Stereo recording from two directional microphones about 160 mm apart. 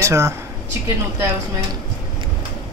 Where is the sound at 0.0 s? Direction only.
20° right (ahead or behind).